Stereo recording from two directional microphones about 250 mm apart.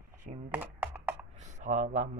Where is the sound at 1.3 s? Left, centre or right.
Right.